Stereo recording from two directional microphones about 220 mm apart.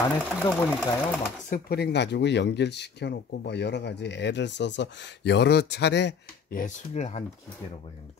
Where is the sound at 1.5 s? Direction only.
45° left (ahead or behind).